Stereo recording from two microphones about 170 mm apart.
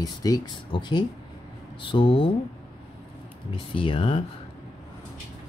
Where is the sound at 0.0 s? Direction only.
20° left (ahead or behind).